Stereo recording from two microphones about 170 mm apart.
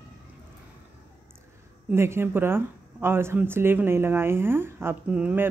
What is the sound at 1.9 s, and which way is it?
Speech, 15° right (ahead or behind).